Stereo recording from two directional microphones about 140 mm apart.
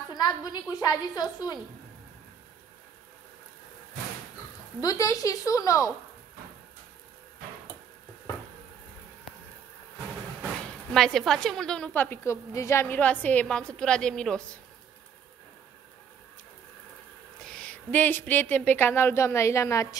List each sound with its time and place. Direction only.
0.1 s a woman's voice: 30° left (ahead or behind)
4.7 s a woman's voice: 25° left (ahead or behind)
10.9 s a woman's voice: 5° left (ahead or behind)
17.4 s a woman's voice: 5° left (ahead or behind); by 20.0 s 20° left (ahead or behind)